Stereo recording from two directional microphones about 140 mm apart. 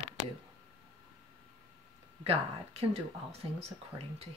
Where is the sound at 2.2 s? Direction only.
45° right (ahead or behind).